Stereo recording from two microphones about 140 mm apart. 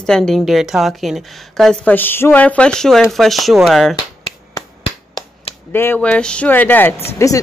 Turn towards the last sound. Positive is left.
turn(degrees=20)  # may be behind; listen again after turning